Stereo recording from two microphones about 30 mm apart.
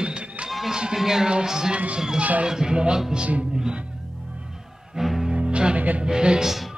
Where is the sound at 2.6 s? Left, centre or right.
Right.